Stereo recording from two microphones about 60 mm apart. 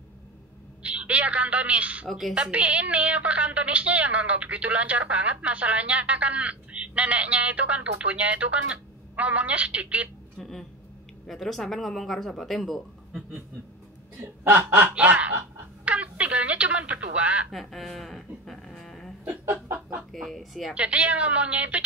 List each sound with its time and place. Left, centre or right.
0.8 s a woman's voice: right
2.0 s speech: centre
2.3 s a woman's voice: centre
11.2 s speech: centre
14.4 s speech: right
15.0 s a woman's voice: right
15.8 s telephone: right
17.5 s dog: centre
19.2 s a sound: right
20.1 s speech: centre
20.7 s a woman's voice: right